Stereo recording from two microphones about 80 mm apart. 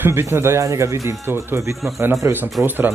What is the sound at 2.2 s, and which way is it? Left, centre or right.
Speech, right.